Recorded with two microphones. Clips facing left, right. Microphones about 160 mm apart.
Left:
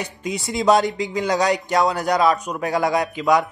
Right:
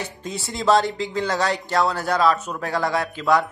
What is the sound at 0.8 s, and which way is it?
Speech, centre (ahead or behind).